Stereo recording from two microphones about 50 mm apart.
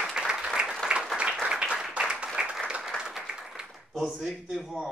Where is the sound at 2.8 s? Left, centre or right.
Centre.